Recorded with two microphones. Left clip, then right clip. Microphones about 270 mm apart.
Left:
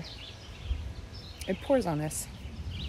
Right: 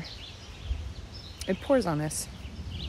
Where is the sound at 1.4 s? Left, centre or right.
Centre.